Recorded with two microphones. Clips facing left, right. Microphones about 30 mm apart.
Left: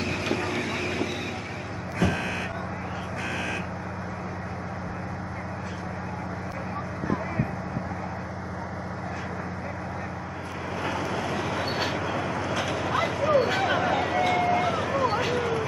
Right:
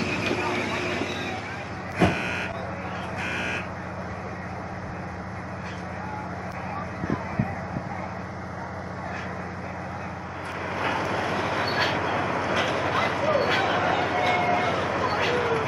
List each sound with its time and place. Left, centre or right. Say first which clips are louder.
0.0 s vehicle: right 2 dB; centre
2.0 s vehicle: even; centre
10.8 s vehicle: right 3 dB; centre
13.7 s a sound: right 1 dB; centre